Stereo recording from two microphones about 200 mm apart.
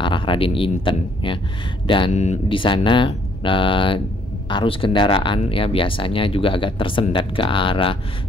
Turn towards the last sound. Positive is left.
turn(degrees=25)  # may be behind; listen again after turning